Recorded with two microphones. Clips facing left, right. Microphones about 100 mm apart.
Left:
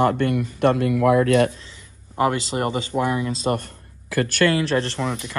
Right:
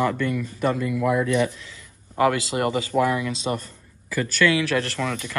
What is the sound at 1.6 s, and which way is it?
Speech, 25° left (ahead or behind).